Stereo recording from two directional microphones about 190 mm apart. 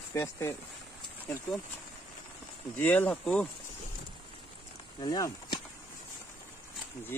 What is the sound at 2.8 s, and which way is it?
Speech, 10° left (ahead or behind).